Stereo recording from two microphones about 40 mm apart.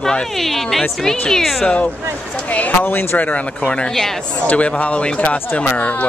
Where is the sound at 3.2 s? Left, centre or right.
Left.